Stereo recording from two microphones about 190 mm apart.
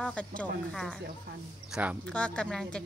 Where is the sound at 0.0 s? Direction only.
5° left (ahead or behind).